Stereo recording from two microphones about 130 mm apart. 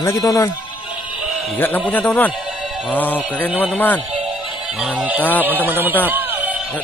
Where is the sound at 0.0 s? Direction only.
20° left (ahead or behind).